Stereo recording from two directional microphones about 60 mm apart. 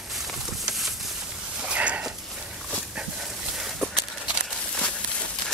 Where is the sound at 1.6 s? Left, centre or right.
Right.